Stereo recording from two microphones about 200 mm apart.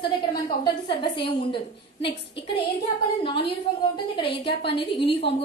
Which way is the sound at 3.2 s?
25° left (ahead or behind).